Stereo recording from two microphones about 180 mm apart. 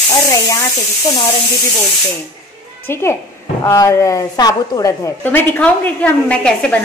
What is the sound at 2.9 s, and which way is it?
A woman's voice, 15° left (ahead or behind).